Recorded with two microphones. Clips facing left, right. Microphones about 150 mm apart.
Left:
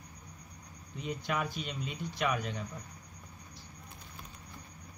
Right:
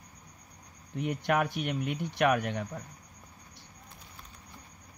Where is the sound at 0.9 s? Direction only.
65° right (ahead or behind).